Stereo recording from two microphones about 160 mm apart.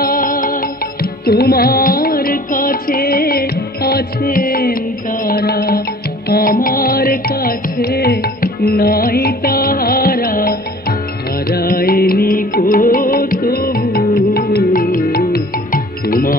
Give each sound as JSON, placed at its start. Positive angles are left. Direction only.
{"t": 0.0, "sound": "music", "side_deg": 60}
{"t": 1.2, "sound": "music", "side_deg": 75}